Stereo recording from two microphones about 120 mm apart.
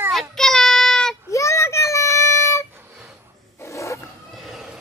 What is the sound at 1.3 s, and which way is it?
Child singing, 25° left (ahead or behind).